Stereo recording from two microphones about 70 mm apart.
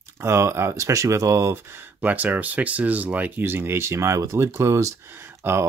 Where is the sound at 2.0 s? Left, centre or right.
Right.